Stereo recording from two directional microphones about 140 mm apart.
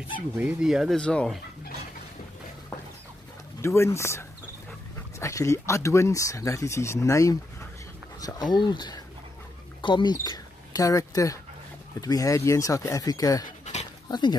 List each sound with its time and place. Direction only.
0.4 s speech: 10° right (ahead or behind)
3.6 s speech: 20° left (ahead or behind)